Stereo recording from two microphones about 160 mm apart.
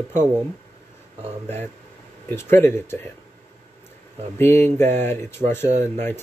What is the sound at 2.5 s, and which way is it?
Speech, 15° left (ahead or behind).